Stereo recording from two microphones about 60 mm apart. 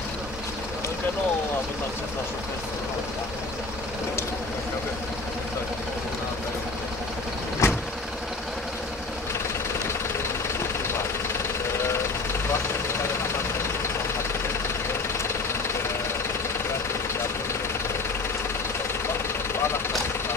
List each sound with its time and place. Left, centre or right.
7.6 s vehicle: left